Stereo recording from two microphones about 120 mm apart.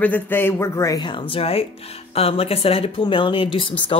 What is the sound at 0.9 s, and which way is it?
Speech, 40° left (ahead or behind).